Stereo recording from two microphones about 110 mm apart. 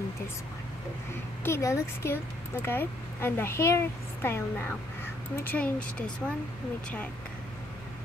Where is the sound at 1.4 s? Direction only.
25° left (ahead or behind).